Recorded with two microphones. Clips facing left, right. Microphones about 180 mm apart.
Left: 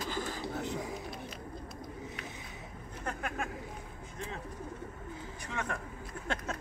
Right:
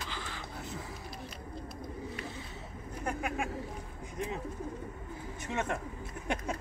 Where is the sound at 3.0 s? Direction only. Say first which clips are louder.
Right 3 dB; 10° right (ahead or behind).